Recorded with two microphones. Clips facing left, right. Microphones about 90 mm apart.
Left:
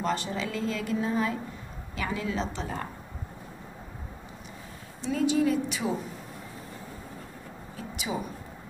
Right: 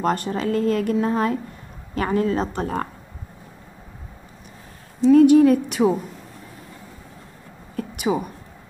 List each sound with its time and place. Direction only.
0.0 s a woman's voice: 50° right (ahead or behind)
5.1 s a woman's voice: 55° right (ahead or behind)
7.7 s a sound: 55° right (ahead or behind)